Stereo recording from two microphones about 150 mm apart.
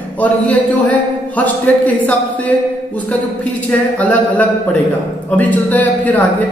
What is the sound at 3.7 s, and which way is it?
Speech, 10° left (ahead or behind).